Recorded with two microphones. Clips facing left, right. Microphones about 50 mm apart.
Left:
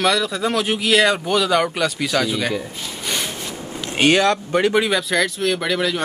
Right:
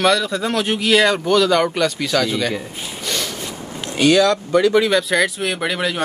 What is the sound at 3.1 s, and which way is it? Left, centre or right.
Rub, left.